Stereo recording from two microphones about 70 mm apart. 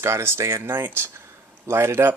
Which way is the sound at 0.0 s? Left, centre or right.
Right.